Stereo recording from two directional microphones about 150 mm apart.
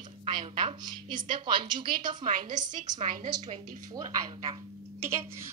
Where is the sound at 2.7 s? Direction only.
55° right (ahead or behind).